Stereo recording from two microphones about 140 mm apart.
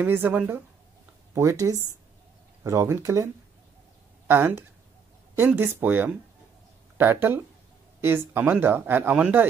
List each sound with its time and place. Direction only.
0.0 s speech: 15° right (ahead or behind)
4.3 s speech: 15° right (ahead or behind)